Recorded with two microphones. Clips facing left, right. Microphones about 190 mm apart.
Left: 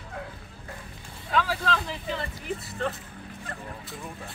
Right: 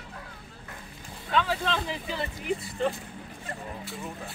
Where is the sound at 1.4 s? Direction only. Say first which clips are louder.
Even; centre (ahead or behind).